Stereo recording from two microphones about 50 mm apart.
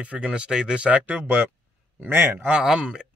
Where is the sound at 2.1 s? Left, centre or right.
Right.